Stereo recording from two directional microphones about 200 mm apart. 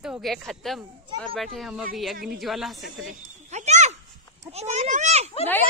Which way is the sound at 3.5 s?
35° right (ahead or behind).